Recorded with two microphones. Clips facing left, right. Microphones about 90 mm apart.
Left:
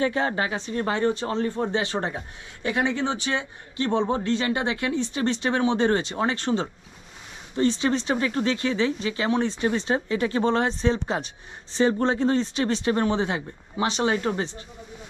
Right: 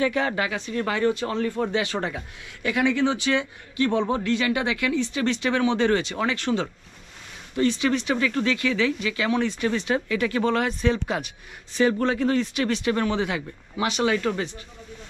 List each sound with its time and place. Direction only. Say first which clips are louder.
0.0 s speech: even; 30° left (ahead or behind)